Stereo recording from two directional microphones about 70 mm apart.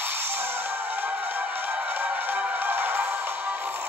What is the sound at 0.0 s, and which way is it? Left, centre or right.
Music, right.